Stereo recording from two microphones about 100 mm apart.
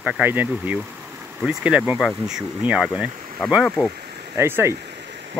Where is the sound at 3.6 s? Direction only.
15° left (ahead or behind).